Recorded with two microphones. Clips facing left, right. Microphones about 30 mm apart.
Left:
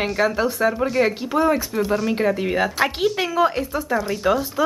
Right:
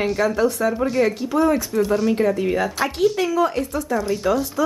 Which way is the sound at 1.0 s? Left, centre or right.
Left.